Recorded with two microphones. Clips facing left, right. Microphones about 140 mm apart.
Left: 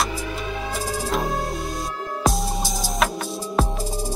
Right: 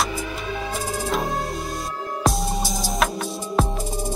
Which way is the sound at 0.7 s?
Centre (ahead or behind).